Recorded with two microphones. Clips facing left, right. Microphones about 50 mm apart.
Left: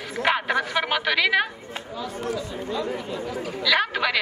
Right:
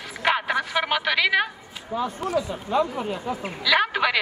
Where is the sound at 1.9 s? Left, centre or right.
Right.